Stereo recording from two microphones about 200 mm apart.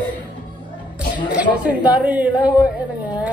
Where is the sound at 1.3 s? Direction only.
5° right (ahead or behind).